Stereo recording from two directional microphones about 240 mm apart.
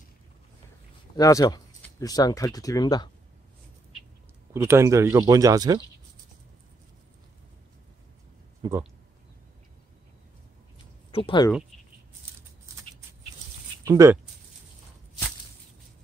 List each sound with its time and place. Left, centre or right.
1.1 s speech: centre
4.6 s speech: centre
8.6 s speech: centre
11.1 s speech: left
12.4 s a sound: centre
13.8 s speech: centre